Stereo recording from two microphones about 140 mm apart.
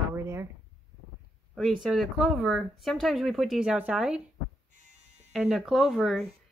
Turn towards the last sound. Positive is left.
turn(degrees=0)  # may be behind; listen again after turning